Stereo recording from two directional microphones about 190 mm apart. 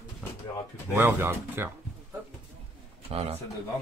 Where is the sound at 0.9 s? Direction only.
10° right (ahead or behind).